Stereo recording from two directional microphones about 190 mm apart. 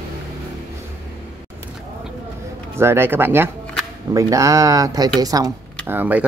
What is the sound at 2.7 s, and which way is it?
Speech, 10° right (ahead or behind).